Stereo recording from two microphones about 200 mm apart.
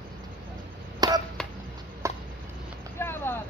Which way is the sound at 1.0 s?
20° right (ahead or behind).